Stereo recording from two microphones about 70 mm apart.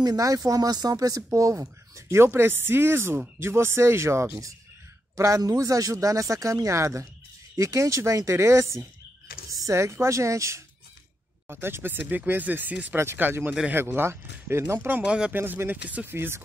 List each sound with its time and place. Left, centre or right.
0.0 s speech: right
5.4 s speech: right
11.4 s speech: right
12.9 s speech: right
15.0 s speech: centre
15.3 s speech: right
16.1 s speech: right